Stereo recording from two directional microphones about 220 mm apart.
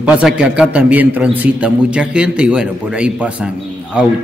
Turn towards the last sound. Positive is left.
turn(degrees=-5)  # may be behind; listen again after turning